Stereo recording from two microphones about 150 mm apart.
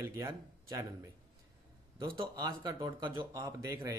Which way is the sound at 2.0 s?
25° right (ahead or behind).